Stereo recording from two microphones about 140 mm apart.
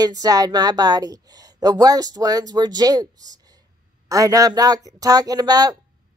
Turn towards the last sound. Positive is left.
turn(degrees=-25)  # may be behind; listen again after turning